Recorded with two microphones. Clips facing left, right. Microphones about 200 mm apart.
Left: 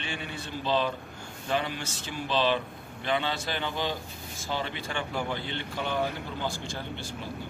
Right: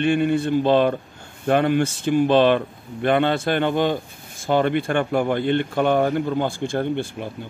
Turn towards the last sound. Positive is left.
turn(degrees=-55)  # may be behind; listen again after turning